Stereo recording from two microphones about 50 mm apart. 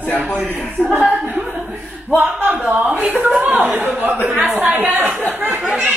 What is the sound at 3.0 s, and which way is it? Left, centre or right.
Speech, right.